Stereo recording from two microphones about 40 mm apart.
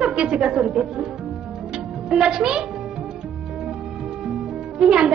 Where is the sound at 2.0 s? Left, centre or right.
Centre.